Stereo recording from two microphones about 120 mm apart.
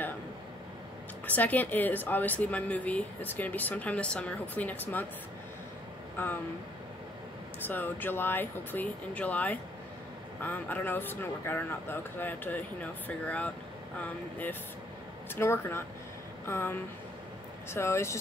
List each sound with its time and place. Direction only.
1.2 s a woman's voice: 15° left (ahead or behind)
6.2 s speech: 20° left (ahead or behind)
7.6 s a woman's voice: 15° left (ahead or behind)